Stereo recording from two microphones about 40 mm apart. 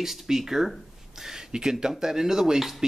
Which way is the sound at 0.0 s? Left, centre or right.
Centre.